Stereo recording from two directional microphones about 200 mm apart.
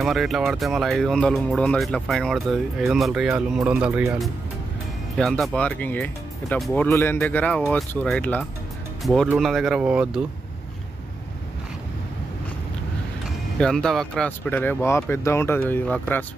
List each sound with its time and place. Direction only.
0.0 s speech: centre (ahead or behind)
13.6 s speech: 5° left (ahead or behind)